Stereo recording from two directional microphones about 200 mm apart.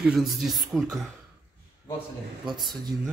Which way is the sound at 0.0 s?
Centre (ahead or behind).